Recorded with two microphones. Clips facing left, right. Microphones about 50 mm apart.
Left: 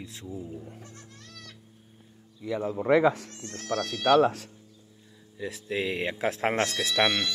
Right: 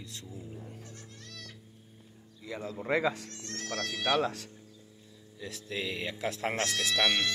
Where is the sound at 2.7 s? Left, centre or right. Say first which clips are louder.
Left 7 dB; left.